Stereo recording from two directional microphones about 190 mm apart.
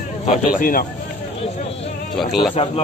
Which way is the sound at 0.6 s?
50° left (ahead or behind).